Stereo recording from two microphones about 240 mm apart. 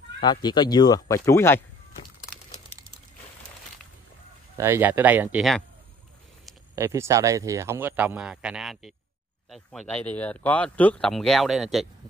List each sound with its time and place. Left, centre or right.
0.2 s speech: centre
4.6 s speech: centre
6.7 s speech: centre